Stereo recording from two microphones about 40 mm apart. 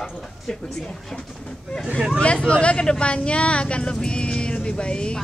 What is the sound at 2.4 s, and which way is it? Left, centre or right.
Speech, left.